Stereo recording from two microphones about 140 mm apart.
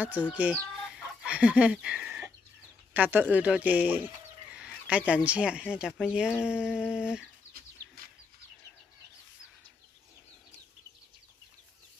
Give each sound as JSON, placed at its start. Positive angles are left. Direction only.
{"t": 0.0, "sound": "speech", "side_deg": -10}